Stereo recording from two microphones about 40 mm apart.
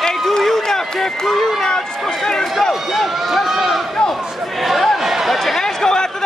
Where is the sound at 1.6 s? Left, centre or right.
Centre.